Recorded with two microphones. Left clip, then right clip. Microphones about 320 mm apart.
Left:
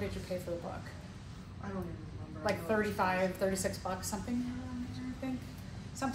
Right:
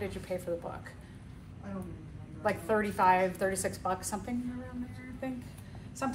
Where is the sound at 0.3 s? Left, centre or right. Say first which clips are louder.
Right 3 dB; right.